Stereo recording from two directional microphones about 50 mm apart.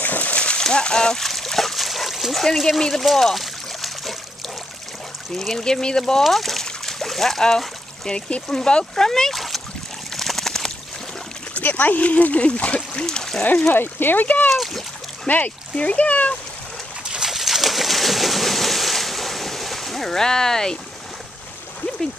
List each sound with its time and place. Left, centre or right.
0.0 s a sound: left
0.4 s splash: centre
2.9 s trickle: centre
5.3 s speech: centre
6.2 s splash: centre
8.5 s speech: centre
10.1 s bird: centre
11.5 s speech: left
13.0 s speech: centre
13.4 s speech: left
14.2 s speech: left
14.5 s speech: centre
15.2 s speech: left
17.1 s a sound: centre